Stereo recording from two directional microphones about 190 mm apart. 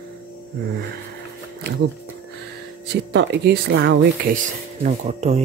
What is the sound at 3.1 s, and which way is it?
Speech, 60° right (ahead or behind).